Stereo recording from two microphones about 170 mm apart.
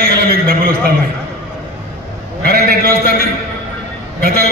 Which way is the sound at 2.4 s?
65° right (ahead or behind).